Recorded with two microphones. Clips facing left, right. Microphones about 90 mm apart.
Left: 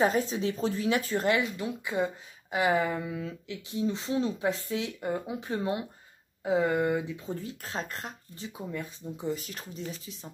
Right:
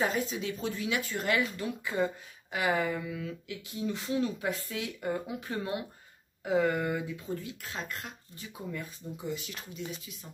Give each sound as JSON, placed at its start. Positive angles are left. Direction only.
{"t": 0.0, "sound": "speech", "side_deg": 35}
{"t": 7.3, "sound": "speech", "side_deg": 35}
{"t": 9.3, "sound": "speech", "side_deg": 40}